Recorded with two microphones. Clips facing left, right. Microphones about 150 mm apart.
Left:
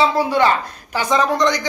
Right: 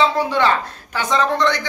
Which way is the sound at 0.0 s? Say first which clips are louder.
Left 1 dB; 10° left (ahead or behind).